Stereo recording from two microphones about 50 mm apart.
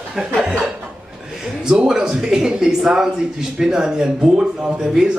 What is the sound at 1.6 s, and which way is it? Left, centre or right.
Speech, centre.